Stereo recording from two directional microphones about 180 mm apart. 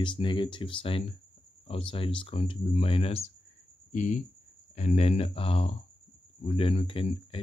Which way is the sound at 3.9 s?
45° left (ahead or behind).